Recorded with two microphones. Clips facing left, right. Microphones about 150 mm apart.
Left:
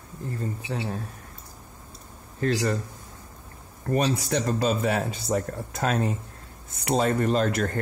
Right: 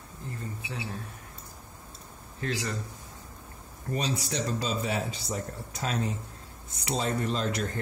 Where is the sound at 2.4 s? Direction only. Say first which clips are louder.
Left 8 dB; 50° left (ahead or behind).